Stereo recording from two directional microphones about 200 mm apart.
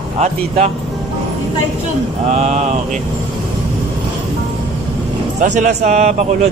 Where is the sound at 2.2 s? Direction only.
35° right (ahead or behind).